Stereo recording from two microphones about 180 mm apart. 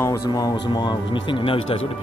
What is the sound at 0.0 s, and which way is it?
Speech, 20° left (ahead or behind).